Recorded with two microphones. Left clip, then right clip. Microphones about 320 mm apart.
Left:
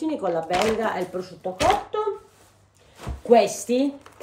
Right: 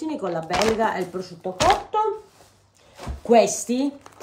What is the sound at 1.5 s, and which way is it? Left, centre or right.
Speech, centre.